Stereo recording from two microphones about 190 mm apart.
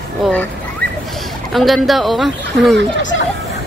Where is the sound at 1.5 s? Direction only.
Centre (ahead or behind).